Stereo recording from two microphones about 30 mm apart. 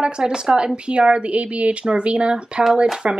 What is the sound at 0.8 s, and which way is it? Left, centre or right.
Speech, right.